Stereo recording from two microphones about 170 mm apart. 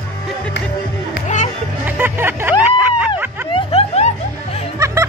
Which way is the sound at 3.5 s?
35° left (ahead or behind).